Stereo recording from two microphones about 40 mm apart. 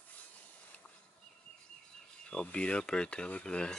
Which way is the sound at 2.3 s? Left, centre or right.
Left.